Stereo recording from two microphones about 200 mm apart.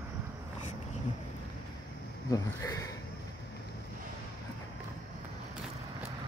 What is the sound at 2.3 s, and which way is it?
Speech, 15° left (ahead or behind).